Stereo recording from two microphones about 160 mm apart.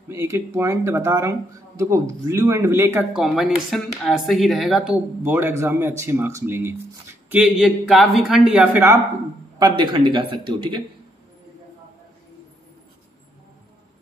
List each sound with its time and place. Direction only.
0.1 s speech: 15° right (ahead or behind)
3.2 s speech: centre (ahead or behind)
9.6 s speech: 30° right (ahead or behind)